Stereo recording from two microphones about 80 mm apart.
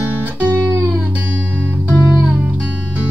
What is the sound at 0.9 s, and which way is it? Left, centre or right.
Music, centre.